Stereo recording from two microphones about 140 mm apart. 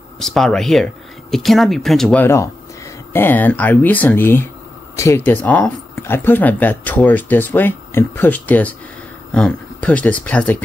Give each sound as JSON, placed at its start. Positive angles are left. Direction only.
{"t": 0.2, "sound": "speech", "side_deg": 0}
{"t": 2.2, "sound": "speech", "side_deg": 20}